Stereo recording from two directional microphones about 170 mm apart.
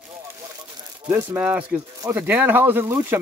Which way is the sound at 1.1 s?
15° right (ahead or behind).